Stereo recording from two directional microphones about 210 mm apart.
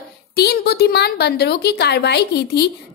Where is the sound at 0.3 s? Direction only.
50° left (ahead or behind).